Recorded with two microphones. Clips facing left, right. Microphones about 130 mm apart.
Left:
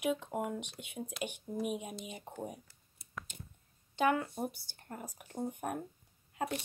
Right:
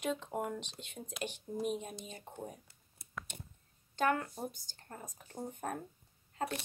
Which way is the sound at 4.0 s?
10° left (ahead or behind).